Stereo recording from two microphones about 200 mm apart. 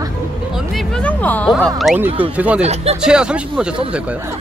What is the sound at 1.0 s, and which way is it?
Speech, 5° left (ahead or behind).